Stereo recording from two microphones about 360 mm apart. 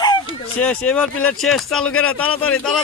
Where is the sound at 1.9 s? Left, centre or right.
Left.